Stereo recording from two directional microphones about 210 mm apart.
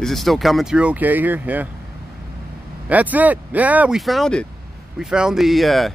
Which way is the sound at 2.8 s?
5° right (ahead or behind).